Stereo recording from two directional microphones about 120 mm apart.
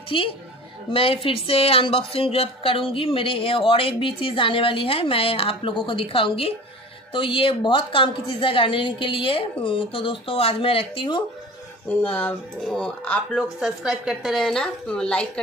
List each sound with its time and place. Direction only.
0.1 s a woman's voice: 45° left (ahead or behind)
11.9 s speech: 15° left (ahead or behind)
13.6 s a woman's voice: 5° right (ahead or behind)